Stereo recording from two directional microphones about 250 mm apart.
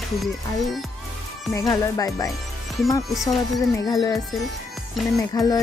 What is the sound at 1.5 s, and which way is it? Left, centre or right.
Speech, centre.